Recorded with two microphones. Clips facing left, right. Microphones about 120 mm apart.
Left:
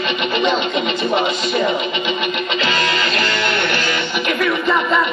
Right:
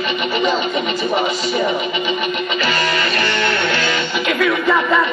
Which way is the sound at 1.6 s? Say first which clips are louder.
Even; 25° left (ahead or behind).